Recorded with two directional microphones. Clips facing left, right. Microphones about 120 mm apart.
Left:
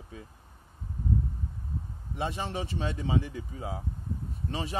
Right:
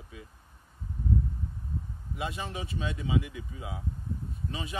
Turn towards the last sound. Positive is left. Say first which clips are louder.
# left 3 dB
turn(degrees=35)  # may be behind; listen again after turning